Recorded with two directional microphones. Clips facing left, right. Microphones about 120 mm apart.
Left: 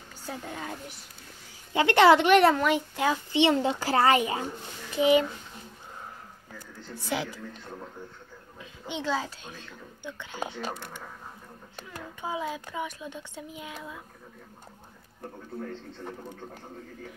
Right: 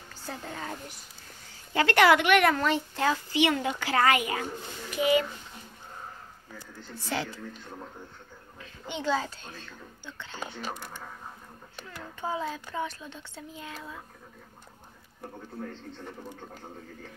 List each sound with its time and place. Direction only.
0.3 s speech: 10° left (ahead or behind)
1.7 s a child's voice: 20° left (ahead or behind)
2.5 s speech: 10° left (ahead or behind)
3.3 s a child's voice: 25° left (ahead or behind)
7.1 s speech: 10° left (ahead or behind)
8.8 s speech: 5° left (ahead or behind)
12.2 s speech: 10° left (ahead or behind)